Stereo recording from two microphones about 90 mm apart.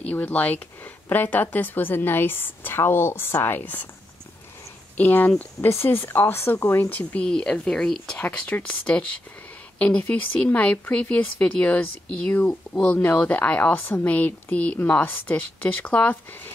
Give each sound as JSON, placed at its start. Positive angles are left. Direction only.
{"t": 0.0, "sound": "speech", "side_deg": 15}
{"t": 4.9, "sound": "speech", "side_deg": 20}
{"t": 8.2, "sound": "speech", "side_deg": 15}